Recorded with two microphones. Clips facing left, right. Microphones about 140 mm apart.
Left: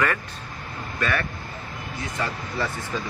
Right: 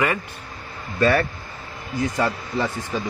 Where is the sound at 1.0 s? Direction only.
30° right (ahead or behind).